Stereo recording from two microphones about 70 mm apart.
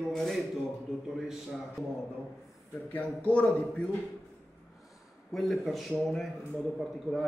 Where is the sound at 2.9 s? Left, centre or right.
Left.